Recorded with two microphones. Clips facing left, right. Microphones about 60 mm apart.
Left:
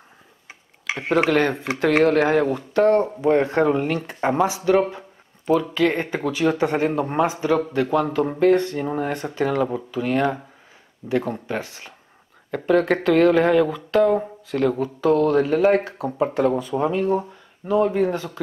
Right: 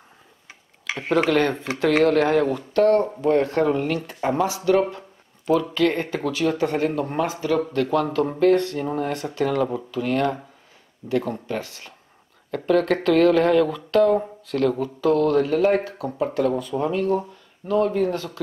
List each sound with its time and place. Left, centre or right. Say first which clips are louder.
0.5 s speech: left 2 dB; centre
5.5 s speech: left 1 dB; centre
6.4 s speech: left 2 dB; left